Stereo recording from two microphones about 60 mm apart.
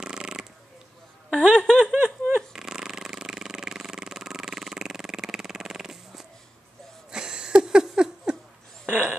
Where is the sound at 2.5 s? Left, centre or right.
Centre.